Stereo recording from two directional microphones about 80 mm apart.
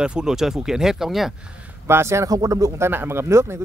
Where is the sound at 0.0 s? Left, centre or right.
Centre.